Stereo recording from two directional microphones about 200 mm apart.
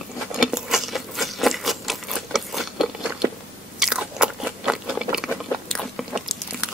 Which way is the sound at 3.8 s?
5° right (ahead or behind).